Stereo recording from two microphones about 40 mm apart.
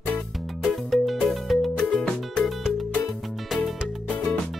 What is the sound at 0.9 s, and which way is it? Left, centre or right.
Music, centre.